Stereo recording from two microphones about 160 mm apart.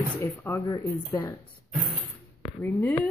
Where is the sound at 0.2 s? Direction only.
15° left (ahead or behind).